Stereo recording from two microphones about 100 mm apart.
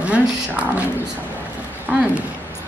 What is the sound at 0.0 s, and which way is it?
Speech, 15° right (ahead or behind).